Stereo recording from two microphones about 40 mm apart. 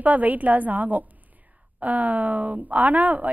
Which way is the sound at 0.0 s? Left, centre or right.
Right.